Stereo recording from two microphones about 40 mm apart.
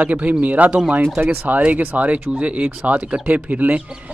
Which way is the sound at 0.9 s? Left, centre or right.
Right.